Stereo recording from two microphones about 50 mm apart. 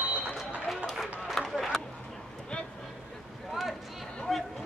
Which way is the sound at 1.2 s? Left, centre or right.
Centre.